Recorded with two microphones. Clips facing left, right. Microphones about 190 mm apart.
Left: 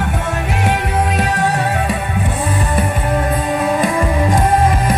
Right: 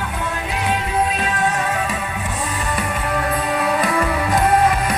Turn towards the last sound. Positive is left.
turn(degrees=20)  # may be behind; listen again after turning